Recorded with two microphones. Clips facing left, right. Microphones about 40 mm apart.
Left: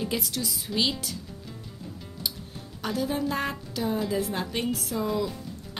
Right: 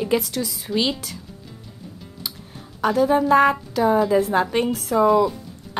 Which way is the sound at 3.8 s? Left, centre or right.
Centre.